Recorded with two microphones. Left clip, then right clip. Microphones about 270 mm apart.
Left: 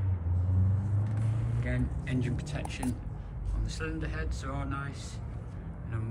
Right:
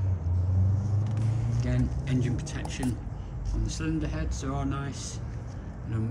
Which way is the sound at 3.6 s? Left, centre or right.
Centre.